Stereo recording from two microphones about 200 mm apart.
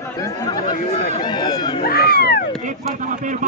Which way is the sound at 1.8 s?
50° left (ahead or behind).